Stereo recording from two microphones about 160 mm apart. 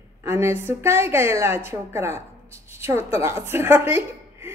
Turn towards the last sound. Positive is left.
turn(degrees=-15)  # may be behind; listen again after turning